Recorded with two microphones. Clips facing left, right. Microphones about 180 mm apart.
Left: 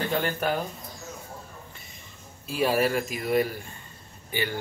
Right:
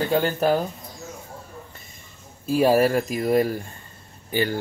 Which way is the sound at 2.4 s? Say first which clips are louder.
Right 6 dB; 40° right (ahead or behind).